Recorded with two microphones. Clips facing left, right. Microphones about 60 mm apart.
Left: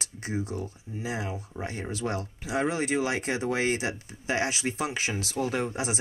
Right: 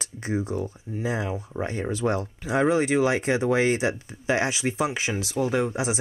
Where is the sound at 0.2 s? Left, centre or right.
Right.